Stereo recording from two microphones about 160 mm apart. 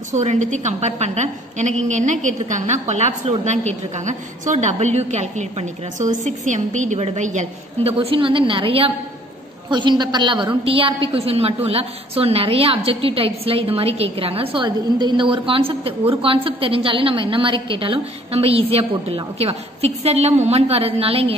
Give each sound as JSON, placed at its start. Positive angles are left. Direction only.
{"t": 0.1, "sound": "a woman's voice", "side_deg": -45}